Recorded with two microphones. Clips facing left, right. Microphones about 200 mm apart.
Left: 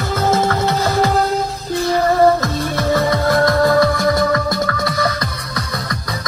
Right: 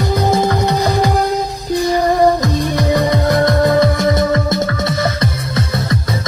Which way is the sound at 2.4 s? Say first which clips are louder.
Right 3 dB; 15° right (ahead or behind).